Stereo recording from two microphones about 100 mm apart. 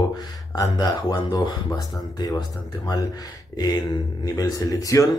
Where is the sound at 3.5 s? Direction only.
45° left (ahead or behind).